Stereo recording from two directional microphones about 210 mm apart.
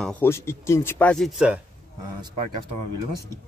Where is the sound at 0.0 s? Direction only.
10° left (ahead or behind).